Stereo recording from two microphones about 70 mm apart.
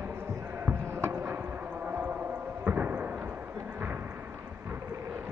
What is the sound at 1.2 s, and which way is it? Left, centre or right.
Clip-clop, right.